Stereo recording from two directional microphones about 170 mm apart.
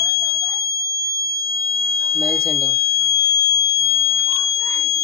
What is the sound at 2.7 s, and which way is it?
Fire alarm, 20° left (ahead or behind).